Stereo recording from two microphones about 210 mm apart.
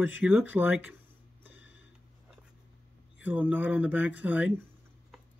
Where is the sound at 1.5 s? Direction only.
60° left (ahead or behind).